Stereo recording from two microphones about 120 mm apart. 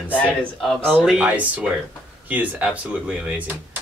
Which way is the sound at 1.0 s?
10° right (ahead or behind).